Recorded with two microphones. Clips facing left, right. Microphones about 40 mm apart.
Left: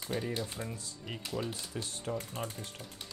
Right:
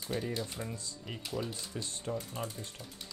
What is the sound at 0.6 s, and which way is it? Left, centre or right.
Speech, centre.